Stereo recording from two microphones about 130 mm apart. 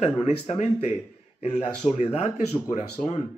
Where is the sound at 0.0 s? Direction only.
60° left (ahead or behind).